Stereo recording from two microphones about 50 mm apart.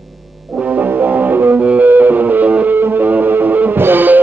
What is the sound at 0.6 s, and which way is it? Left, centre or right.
Music, right.